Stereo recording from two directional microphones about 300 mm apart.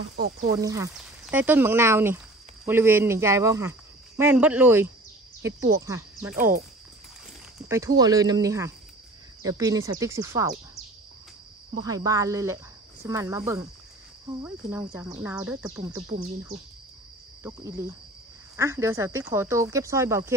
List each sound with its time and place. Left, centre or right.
0.1 s speech: right
0.5 s speech: centre
7.6 s speech: centre
11.8 s speech: centre